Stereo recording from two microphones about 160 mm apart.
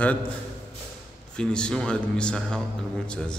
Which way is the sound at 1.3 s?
5° left (ahead or behind).